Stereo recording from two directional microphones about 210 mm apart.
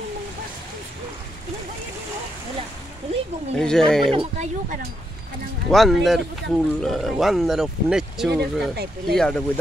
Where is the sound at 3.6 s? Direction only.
5° left (ahead or behind).